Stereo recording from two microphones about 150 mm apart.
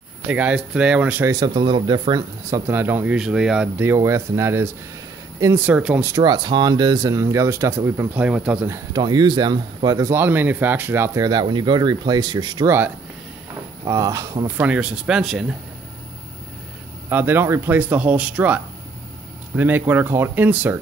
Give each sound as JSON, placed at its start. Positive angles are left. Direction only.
{"t": 0.3, "sound": "speech", "side_deg": -10}
{"t": 1.3, "sound": "speech", "side_deg": -30}
{"t": 6.1, "sound": "speech", "side_deg": -30}
{"t": 8.6, "sound": "speech", "side_deg": -20}
{"t": 13.8, "sound": "speech", "side_deg": -20}
{"t": 14.6, "sound": "speech", "side_deg": -10}
{"t": 17.1, "sound": "speech", "side_deg": -15}